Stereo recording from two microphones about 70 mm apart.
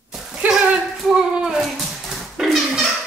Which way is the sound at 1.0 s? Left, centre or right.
Centre.